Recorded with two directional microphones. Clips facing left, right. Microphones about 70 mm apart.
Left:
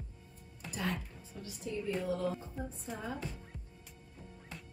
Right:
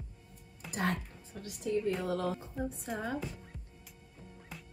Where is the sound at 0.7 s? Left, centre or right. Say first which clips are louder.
Right 4 dB; right.